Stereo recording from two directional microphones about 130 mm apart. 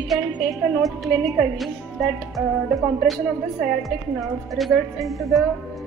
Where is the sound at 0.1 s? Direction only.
Centre (ahead or behind).